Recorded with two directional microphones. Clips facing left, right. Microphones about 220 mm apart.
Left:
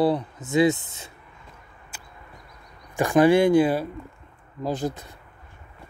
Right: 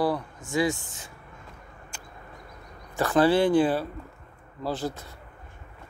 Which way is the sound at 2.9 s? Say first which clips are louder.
Left 4 dB; 15° left (ahead or behind).